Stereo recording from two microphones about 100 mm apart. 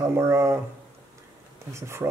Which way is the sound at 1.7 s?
30° right (ahead or behind).